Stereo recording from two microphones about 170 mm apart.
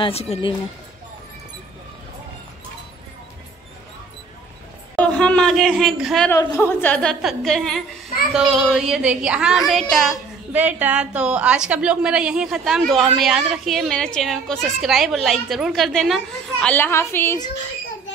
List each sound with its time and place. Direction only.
0.0 s speech: 40° left (ahead or behind)
4.9 s speech: 5° left (ahead or behind)
6.3 s a woman's voice: 15° left (ahead or behind)
10.5 s a woman's voice: 10° right (ahead or behind)
16.6 s a woman's voice: 10° left (ahead or behind)